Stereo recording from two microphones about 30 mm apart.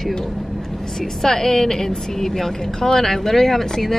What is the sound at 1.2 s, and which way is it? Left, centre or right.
A woman's voice, centre.